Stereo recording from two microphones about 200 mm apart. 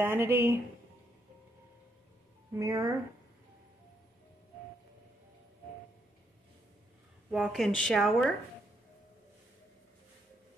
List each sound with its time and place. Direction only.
0.0 s speech: 10° right (ahead or behind)
2.5 s speech: 15° right (ahead or behind)
7.2 s speech: 5° right (ahead or behind)